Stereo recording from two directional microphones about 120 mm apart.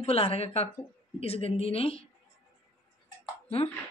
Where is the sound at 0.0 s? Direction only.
55° left (ahead or behind).